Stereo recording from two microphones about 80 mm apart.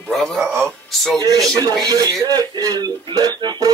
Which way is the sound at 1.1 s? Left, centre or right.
Right.